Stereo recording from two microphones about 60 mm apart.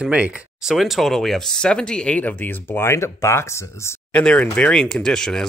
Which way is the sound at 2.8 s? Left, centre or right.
Left.